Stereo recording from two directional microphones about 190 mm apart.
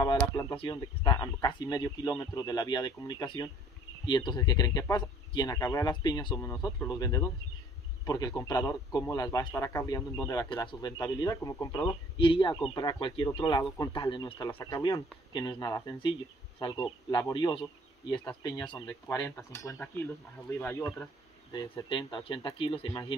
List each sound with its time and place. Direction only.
0.0 s a man's voice: 20° left (ahead or behind)
11.8 s a man's voice: 25° left (ahead or behind)